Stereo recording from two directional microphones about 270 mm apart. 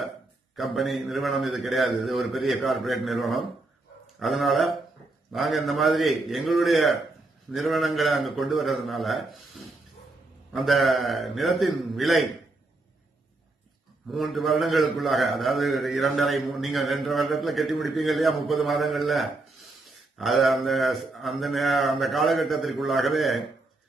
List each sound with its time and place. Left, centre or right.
0.6 s a man's voice: centre
10.5 s a man's voice: centre
14.0 s a man's voice: centre